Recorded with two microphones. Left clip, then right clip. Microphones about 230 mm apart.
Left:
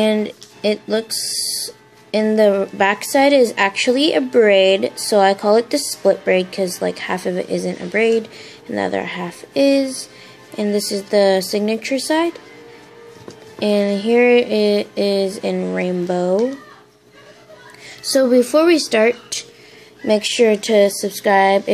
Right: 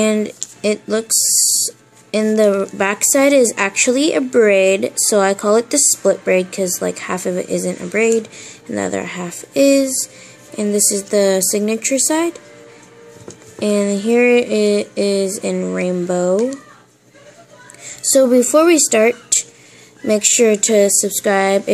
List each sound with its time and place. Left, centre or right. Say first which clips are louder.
0.0 s a woman's voice: even; centre
13.6 s a woman's voice: even; centre
17.8 s a woman's voice: right 3 dB; centre